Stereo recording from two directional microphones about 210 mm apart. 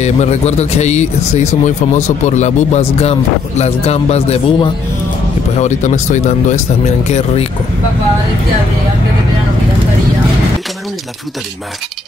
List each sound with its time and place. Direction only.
0.0 s speech: 30° left (ahead or behind)